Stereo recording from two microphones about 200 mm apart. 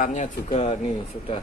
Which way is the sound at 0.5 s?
30° left (ahead or behind).